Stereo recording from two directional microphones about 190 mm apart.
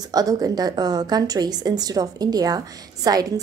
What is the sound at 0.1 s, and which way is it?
A woman's voice, 20° right (ahead or behind).